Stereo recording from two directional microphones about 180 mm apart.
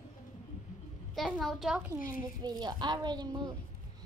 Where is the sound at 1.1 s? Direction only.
Centre (ahead or behind).